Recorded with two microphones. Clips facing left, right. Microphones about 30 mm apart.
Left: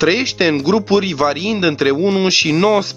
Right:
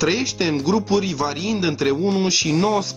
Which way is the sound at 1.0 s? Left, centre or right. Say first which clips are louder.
Left 6 dB; left.